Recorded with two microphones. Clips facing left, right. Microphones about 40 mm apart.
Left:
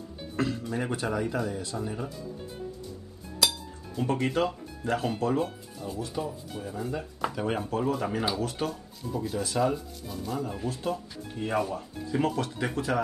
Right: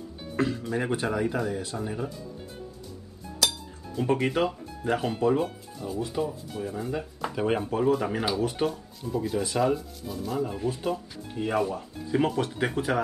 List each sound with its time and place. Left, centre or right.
0.4 s speech: centre
3.4 s music: centre
4.1 s speech: centre
5.2 s speech: centre
8.4 s speech: right
9.1 s speech: centre
12.1 s speech: centre